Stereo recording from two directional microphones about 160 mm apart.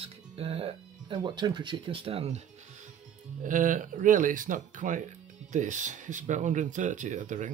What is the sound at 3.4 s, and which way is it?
Speech, 55° right (ahead or behind).